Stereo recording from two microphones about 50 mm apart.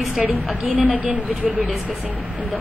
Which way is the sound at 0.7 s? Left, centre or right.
Right.